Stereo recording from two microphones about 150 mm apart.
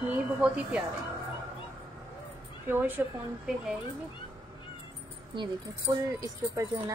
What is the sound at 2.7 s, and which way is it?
Speech, 15° right (ahead or behind).